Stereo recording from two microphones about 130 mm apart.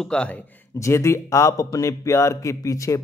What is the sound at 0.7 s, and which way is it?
Speech, 20° left (ahead or behind).